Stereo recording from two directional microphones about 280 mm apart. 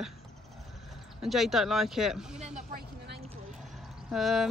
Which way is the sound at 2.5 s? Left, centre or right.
Right.